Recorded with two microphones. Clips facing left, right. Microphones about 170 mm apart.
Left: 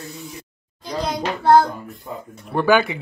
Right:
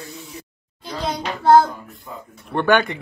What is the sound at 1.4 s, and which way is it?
Child singing, centre (ahead or behind).